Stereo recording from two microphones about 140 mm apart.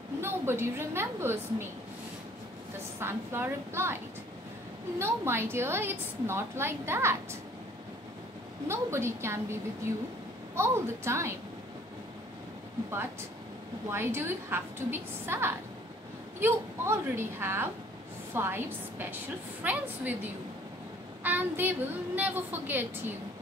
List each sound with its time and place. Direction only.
0.2 s a woman's voice: 15° right (ahead or behind)
3.0 s a woman's voice: 15° right (ahead or behind)
8.6 s a woman's voice: 20° right (ahead or behind)
13.8 s a woman's voice: 15° right (ahead or behind)